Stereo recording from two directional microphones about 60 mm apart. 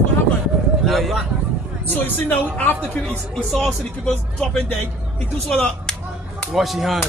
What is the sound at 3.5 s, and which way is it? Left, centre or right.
Speech, centre.